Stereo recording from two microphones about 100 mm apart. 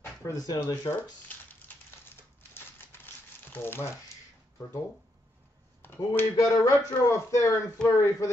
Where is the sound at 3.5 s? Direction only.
25° left (ahead or behind).